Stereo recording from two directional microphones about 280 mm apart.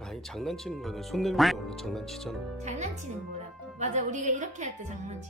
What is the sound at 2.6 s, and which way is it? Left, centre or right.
A woman's voice, right.